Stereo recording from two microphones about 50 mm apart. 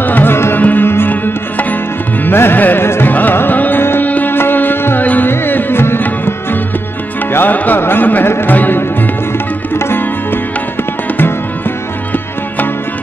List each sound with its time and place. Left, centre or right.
0.0 s music: left
0.6 s music: left
0.8 s music: left
3.1 s music: left
7.8 s speech: left
9.8 s music: left